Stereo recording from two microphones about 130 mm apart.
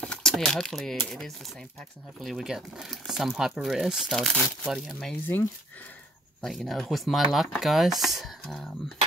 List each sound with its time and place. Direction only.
0.0 s a sound: 5° left (ahead or behind)
1.0 s speech: 5° left (ahead or behind)
5.2 s speech: 15° left (ahead or behind)
6.4 s speech: centre (ahead or behind)